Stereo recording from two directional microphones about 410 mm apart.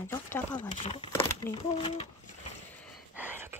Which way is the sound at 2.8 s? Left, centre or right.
Centre.